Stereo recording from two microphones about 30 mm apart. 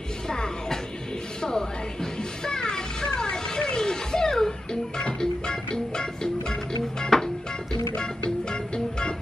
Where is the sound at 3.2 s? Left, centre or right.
Left.